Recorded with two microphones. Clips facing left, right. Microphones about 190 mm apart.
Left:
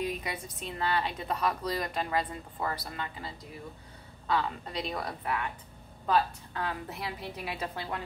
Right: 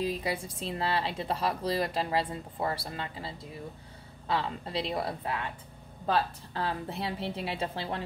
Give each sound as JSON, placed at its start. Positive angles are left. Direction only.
{"t": 0.0, "sound": "a woman's voice", "side_deg": -30}